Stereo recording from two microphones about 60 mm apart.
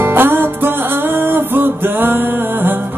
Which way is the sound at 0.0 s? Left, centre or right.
Right.